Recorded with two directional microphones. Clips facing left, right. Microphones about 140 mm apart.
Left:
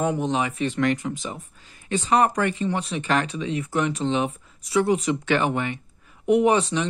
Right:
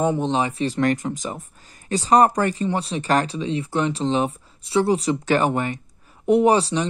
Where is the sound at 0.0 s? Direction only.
25° right (ahead or behind).